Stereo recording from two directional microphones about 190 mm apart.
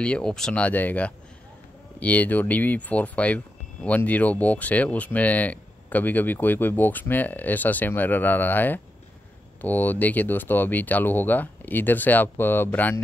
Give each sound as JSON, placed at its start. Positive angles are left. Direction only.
{"t": 0.0, "sound": "speech", "side_deg": 5}